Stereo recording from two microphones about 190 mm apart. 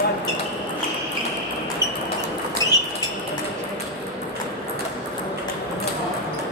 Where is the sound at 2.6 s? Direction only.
20° left (ahead or behind).